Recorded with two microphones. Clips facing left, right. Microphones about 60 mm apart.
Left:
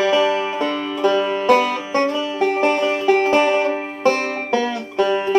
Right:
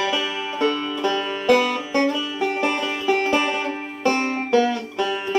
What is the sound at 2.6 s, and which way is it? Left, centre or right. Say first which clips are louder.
Music: left 5 dB; left.